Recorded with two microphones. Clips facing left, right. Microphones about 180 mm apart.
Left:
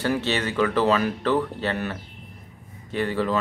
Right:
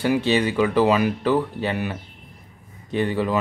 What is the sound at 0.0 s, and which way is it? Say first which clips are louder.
Speech: right 5 dB; 15° right (ahead or behind).